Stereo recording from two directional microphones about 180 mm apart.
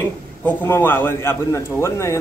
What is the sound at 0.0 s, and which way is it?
A man's voice, 10° left (ahead or behind).